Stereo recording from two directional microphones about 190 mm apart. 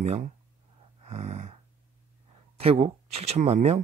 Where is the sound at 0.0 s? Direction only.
35° right (ahead or behind).